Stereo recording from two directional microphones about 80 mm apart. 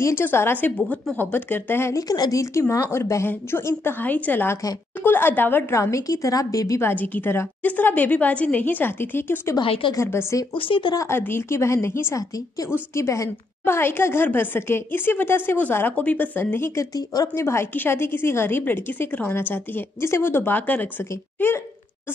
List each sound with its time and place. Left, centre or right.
0.0 s a woman's voice: left
2.0 s a woman's voice: left
5.8 s a woman's voice: left
6.8 s a woman's voice: left
9.6 s a woman's voice: left
9.9 s a woman's voice: left
10.5 s speech: left
11.0 s a woman's voice: left
16.7 s a woman's voice: left
17.3 s a woman's voice: left